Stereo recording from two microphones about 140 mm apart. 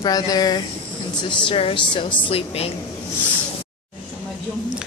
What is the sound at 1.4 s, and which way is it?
A woman's voice, 40° left (ahead or behind).